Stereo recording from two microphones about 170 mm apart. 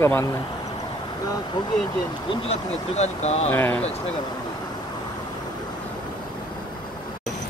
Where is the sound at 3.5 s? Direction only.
10° left (ahead or behind).